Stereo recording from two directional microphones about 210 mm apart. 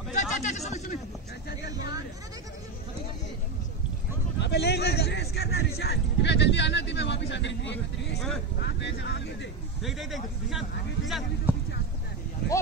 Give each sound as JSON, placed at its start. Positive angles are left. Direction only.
{"t": 0.1, "sound": "a sound", "side_deg": 35}
{"t": 4.4, "sound": "a man's voice", "side_deg": 55}
{"t": 9.8, "sound": "speech", "side_deg": 0}